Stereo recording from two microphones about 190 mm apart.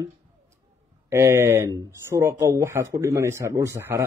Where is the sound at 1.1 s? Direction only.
15° right (ahead or behind).